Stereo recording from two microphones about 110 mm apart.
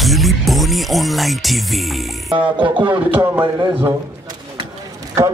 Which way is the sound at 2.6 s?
45° right (ahead or behind).